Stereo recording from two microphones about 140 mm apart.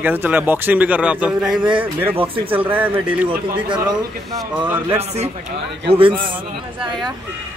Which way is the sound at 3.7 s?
30° right (ahead or behind).